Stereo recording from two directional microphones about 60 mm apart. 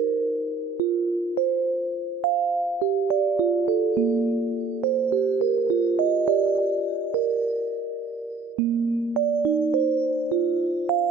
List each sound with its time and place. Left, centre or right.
4.1 s music: right